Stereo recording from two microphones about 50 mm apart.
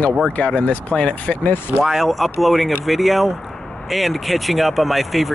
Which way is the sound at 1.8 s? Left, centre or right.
Centre.